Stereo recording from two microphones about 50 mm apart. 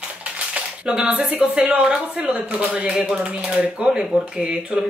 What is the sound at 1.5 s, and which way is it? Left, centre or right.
Speech, centre.